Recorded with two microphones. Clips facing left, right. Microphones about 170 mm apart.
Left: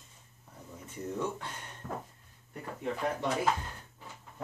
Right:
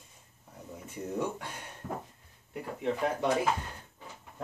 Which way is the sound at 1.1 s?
10° right (ahead or behind).